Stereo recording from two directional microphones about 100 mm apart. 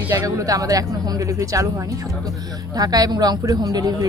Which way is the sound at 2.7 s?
40° right (ahead or behind).